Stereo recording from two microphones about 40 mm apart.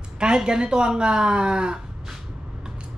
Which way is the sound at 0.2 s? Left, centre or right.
Right.